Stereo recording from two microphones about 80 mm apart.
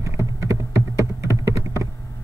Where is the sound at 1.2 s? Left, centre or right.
Right.